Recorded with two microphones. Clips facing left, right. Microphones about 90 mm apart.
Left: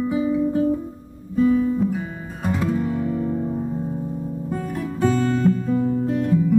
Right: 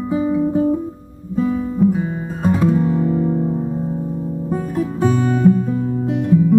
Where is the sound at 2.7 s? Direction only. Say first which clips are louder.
Right 6 dB; 20° right (ahead or behind).